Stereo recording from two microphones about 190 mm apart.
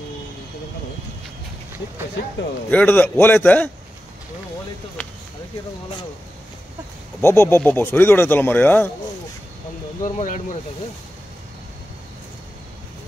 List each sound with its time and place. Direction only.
2.7 s speech: 10° left (ahead or behind)
7.2 s speech: 15° left (ahead or behind)
10.0 s speech: 40° left (ahead or behind)